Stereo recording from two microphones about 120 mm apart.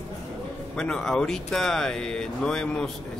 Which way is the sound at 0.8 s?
5° left (ahead or behind).